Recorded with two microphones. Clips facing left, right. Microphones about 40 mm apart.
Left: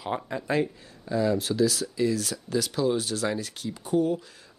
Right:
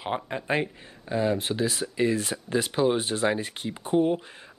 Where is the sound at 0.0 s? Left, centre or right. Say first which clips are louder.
Right 1 dB; right.